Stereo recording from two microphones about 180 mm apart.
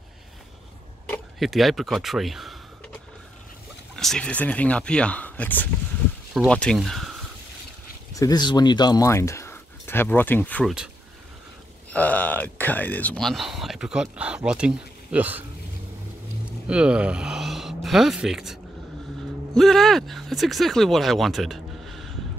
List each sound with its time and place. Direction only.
1.0 s speech: 5° left (ahead or behind)
3.9 s speech: 5° left (ahead or behind)
8.1 s speech: 20° left (ahead or behind)
11.9 s speech: 10° left (ahead or behind); by 15.4 s 10° right (ahead or behind)
16.6 s speech: 5° right (ahead or behind)